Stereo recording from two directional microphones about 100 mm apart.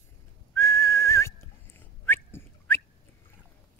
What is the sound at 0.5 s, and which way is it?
Whistling, 25° left (ahead or behind).